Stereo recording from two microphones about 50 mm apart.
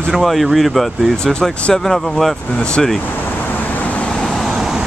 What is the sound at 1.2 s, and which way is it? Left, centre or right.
Speech, centre.